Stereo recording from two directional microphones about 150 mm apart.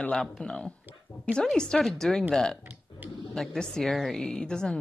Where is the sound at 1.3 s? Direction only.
5° left (ahead or behind).